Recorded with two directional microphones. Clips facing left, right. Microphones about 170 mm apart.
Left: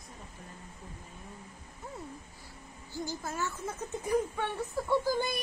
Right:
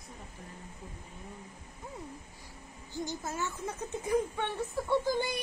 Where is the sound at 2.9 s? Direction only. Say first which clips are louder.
Even; 20° right (ahead or behind).